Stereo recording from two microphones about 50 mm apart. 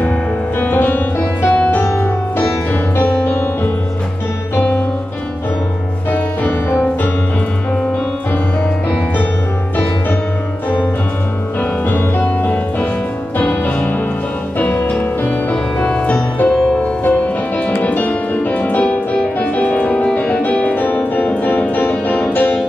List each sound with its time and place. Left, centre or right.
0.6 s music: left
4.6 s music: left
11.9 s music: left
13.4 s music: left
16.4 s music: centre
17.8 s music: left
21.5 s music: left